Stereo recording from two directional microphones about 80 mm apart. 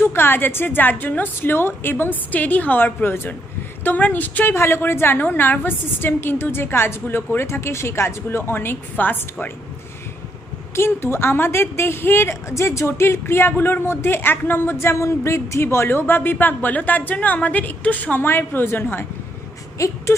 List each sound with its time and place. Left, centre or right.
0.0 s a woman's voice: left
4.6 s a woman's voice: left
10.7 s a woman's voice: left
19.8 s a sound: left